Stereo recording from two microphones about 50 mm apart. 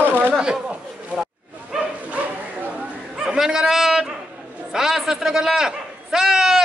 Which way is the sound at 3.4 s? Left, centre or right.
Centre.